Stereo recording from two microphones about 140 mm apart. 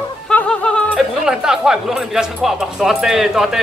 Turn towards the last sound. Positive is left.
turn(degrees=-5)  # may be behind; listen again after turning